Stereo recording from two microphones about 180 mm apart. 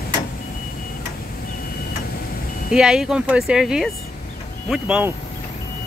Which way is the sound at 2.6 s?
5° right (ahead or behind).